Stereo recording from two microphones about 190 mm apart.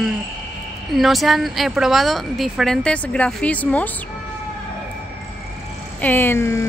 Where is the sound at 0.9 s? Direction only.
Centre (ahead or behind).